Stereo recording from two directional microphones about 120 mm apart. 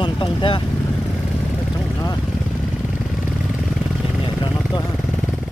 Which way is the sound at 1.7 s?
30° left (ahead or behind).